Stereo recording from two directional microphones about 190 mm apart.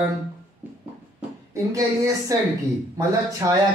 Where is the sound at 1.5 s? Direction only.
15° right (ahead or behind).